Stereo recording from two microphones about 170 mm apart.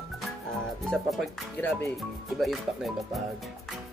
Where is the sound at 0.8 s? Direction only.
Centre (ahead or behind).